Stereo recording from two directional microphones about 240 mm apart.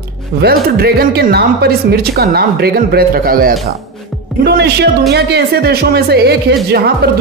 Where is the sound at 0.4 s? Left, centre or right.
Right.